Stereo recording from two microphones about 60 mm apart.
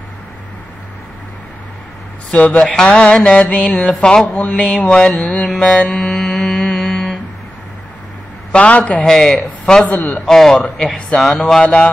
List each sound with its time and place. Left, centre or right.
2.3 s a man's voice: left
2.6 s mantra: centre
5.9 s music: centre
8.5 s a man's voice: left
9.0 s mantra: centre
9.8 s a man's voice: left
10.2 s mantra: centre
11.6 s a man's voice: centre